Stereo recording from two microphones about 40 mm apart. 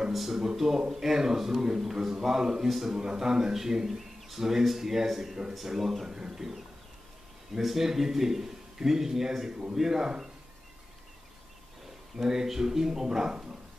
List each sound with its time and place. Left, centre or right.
0.1 s a sound: centre
0.6 s a man's voice: centre
6.0 s a man's voice: centre
7.5 s a man's voice: centre
12.2 s a man's voice: centre